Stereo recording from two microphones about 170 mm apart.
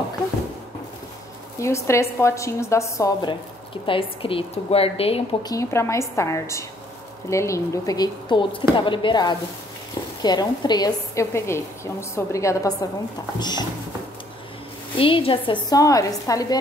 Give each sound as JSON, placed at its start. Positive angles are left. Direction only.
{"t": 1.6, "sound": "a woman's voice", "side_deg": 15}
{"t": 5.4, "sound": "a woman's voice", "side_deg": 20}
{"t": 15.0, "sound": "a woman's voice", "side_deg": 30}